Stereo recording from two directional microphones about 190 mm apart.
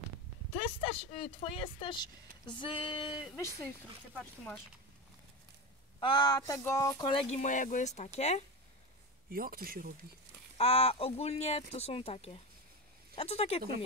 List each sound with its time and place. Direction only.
0.6 s speech: 25° left (ahead or behind)
5.9 s speech: 25° left (ahead or behind)
9.3 s speech: 50° right (ahead or behind)
10.6 s speech: 30° left (ahead or behind)